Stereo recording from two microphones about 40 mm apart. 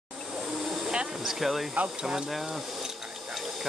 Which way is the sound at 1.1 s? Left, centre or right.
Centre.